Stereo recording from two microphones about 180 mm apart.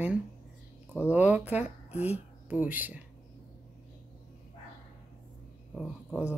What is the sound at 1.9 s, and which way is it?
Speech, 35° left (ahead or behind).